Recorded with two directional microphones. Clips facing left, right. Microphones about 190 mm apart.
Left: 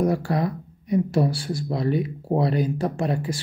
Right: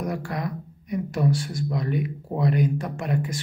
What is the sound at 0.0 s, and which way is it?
Speech, 30° left (ahead or behind).